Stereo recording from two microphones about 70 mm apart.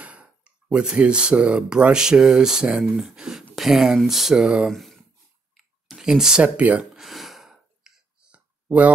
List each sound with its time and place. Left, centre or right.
0.0 s speech: centre
4.6 s speech: centre
5.9 s speech: centre
6.4 s speech: right
7.0 s sigh: centre; by 8.9 s right